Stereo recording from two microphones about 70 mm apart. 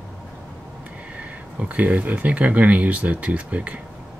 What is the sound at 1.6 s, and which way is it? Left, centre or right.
Speech, right.